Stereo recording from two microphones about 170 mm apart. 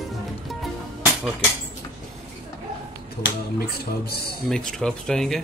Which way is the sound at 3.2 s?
65° left (ahead or behind).